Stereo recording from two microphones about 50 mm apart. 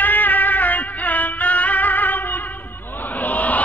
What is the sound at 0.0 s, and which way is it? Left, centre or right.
Music, left.